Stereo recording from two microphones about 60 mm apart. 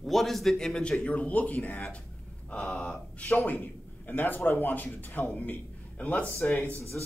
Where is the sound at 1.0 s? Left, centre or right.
Left.